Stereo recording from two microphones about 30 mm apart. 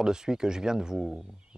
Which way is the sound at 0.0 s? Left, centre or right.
Right.